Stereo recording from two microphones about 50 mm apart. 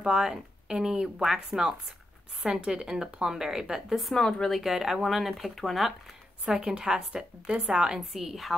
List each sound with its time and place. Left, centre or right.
0.0 s speech: centre
4.2 s speech: centre
6.4 s a woman's voice: centre
8.1 s speech: centre